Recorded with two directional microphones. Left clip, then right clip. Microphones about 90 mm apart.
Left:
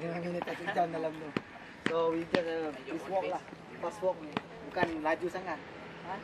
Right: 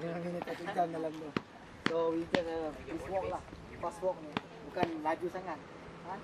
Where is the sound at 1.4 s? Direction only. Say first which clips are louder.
Left 1 dB; 70° right (ahead or behind).